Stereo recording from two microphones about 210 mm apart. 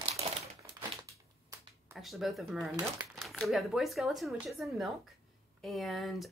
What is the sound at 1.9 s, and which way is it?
Speech, centre (ahead or behind).